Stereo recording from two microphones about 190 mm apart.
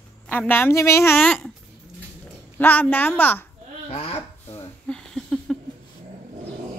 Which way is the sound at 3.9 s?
30° left (ahead or behind).